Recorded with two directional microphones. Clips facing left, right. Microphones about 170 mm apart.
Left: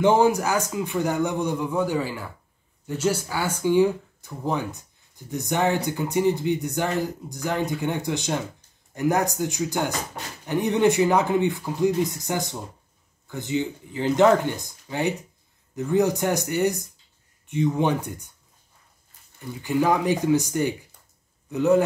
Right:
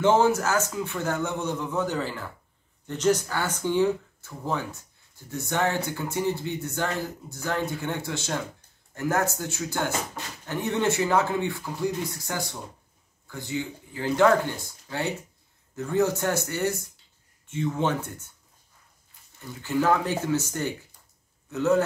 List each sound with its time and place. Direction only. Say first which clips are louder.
0.0 s speech: left 2 dB; 15° left (ahead or behind)
19.6 s speech: left 2 dB; 15° left (ahead or behind)